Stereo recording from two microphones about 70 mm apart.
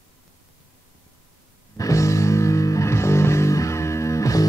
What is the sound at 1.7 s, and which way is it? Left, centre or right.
Music, left.